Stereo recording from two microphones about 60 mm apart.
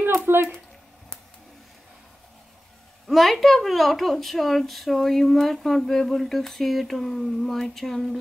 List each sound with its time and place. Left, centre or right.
0.3 s speech: right
3.1 s speech: centre